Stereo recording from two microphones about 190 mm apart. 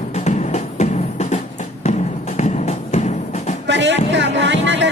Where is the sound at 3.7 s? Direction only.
70° right (ahead or behind).